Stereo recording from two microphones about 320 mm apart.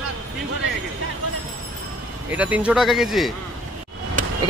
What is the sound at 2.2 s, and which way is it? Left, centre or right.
Speech, centre.